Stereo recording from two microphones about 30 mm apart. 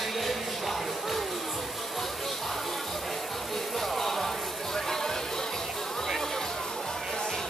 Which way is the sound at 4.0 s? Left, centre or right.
Centre.